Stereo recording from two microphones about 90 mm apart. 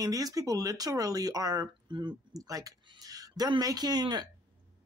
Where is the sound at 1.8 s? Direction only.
60° right (ahead or behind).